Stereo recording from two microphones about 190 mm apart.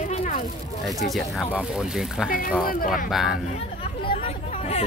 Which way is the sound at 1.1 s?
Centre (ahead or behind).